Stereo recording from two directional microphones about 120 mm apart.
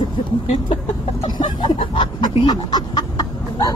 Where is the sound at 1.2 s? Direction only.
40° left (ahead or behind).